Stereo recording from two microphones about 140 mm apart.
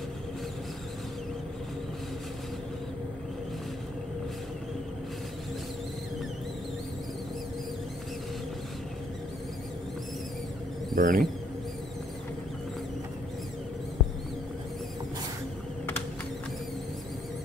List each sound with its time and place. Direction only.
11.0 s speech: 85° right